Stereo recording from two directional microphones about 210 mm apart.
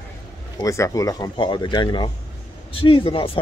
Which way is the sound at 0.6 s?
15° left (ahead or behind).